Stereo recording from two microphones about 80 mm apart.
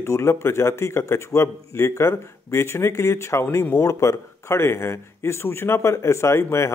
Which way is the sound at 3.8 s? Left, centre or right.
Left.